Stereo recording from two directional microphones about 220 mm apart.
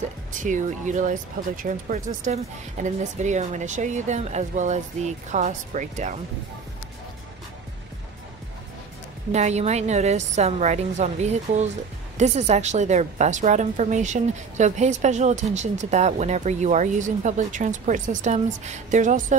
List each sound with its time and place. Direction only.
0.3 s a woman's voice: 35° right (ahead or behind)
9.3 s a woman's voice: 30° right (ahead or behind)